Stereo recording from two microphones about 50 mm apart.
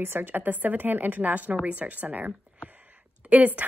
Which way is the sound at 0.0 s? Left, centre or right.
Right.